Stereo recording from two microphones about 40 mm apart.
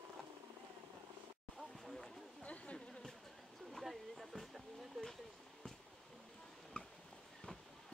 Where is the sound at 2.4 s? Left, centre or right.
Left.